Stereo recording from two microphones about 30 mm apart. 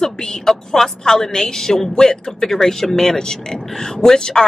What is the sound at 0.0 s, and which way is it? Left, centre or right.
A woman's voice, left.